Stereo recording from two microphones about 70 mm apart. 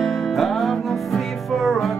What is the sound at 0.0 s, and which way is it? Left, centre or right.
Music, centre.